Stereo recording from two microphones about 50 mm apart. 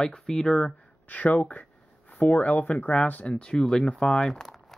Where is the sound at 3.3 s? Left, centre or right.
Centre.